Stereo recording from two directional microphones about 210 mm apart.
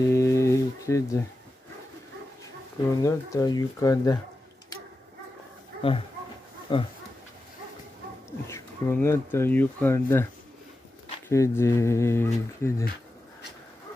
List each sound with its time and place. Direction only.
0.1 s a sound: 15° left (ahead or behind)
3.0 s speech: 15° left (ahead or behind)
5.8 s speech: 25° left (ahead or behind)
8.5 s speech: 10° left (ahead or behind)
11.2 s speech: 15° left (ahead or behind)